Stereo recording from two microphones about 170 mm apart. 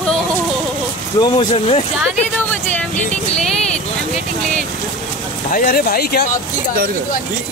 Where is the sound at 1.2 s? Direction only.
25° left (ahead or behind).